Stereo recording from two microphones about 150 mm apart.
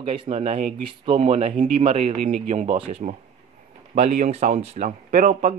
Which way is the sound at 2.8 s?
40° right (ahead or behind).